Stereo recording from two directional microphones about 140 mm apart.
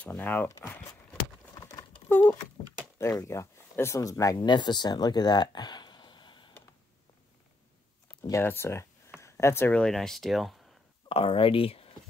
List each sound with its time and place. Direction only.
0.0 s speech: 10° left (ahead or behind)
1.5 s crumpling: 25° left (ahead or behind)
2.0 s speech: 15° left (ahead or behind); by 6.5 s 35° left (ahead or behind)
8.3 s speech: 15° left (ahead or behind); by 10.8 s centre (ahead or behind)
11.1 s speech: 40° left (ahead or behind)